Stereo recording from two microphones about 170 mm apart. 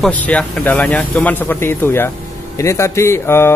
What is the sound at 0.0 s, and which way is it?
Speech, 10° left (ahead or behind).